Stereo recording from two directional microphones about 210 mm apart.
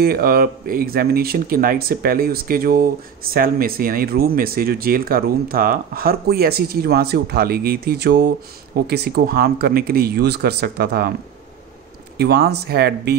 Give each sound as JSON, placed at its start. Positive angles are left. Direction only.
{"t": 0.0, "sound": "speech", "side_deg": -45}
{"t": 12.2, "sound": "speech", "side_deg": -50}